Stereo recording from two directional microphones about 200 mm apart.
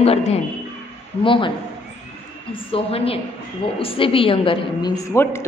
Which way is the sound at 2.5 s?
30° left (ahead or behind).